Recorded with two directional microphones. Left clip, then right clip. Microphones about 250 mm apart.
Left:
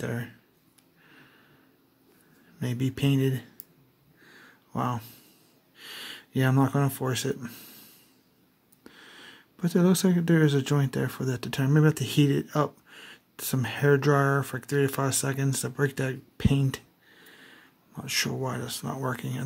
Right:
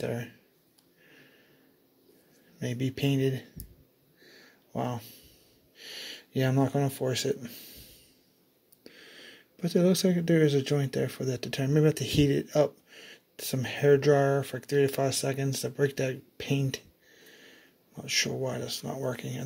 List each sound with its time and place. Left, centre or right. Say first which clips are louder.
0.0 s speech: right 1 dB; centre
2.6 s speech: left 1 dB; centre
4.7 s speech: left 3 dB; centre
8.8 s a sound: left 1 dB; centre
10.4 s speech: even; centre
15.8 s a sound: right 1 dB; centre
18.6 s speech: left 1 dB; centre